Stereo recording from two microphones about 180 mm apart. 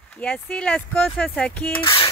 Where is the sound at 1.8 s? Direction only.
30° left (ahead or behind).